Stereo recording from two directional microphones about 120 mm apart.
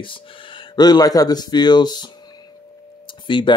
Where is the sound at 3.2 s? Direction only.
45° left (ahead or behind).